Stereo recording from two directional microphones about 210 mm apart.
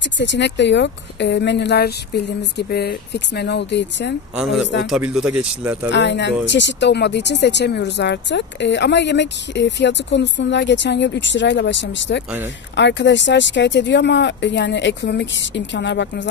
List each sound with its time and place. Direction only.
0.2 s speech: 55° left (ahead or behind)
4.4 s speech: centre (ahead or behind)
5.9 s speech: 55° left (ahead or behind)